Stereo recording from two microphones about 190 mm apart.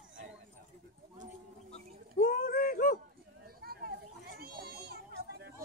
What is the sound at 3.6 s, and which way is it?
Children playing, 55° right (ahead or behind).